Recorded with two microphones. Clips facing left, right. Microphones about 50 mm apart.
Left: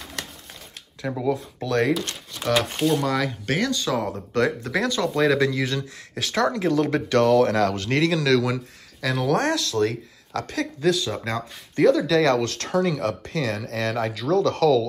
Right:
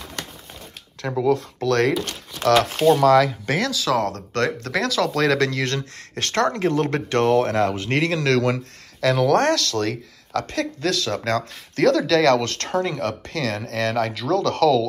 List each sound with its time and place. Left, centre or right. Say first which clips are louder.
1.0 s speech: right 4 dB; right
2.0 s speech: right 2 dB; centre
2.8 s speech: right 7 dB; right
6.1 s speech: right 2 dB; right
6.5 s speech: even; right
9.0 s speech: right 5 dB; right
9.4 s speech: right 2 dB; right
12.1 s speech: right 2 dB; right